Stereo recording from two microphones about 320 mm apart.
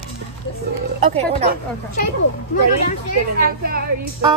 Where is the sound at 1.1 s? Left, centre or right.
Centre.